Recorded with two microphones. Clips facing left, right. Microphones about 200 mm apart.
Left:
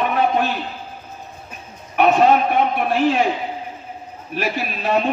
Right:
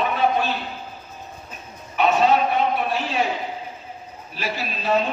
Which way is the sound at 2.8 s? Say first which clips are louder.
Left 7 dB; 55° left (ahead or behind).